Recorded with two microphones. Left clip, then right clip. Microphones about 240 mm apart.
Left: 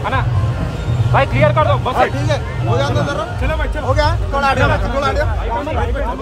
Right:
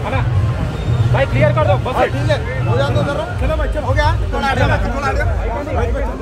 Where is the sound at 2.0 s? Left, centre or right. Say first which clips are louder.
Even; left.